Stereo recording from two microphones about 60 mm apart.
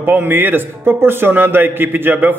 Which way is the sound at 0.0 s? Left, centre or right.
Right.